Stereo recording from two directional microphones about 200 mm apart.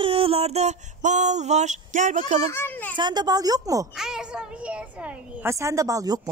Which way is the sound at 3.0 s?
20° right (ahead or behind).